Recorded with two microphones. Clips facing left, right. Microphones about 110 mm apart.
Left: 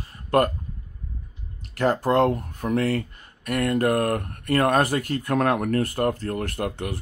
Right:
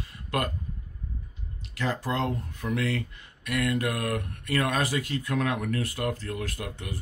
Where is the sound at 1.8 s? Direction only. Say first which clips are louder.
Left 9 dB; 55° left (ahead or behind).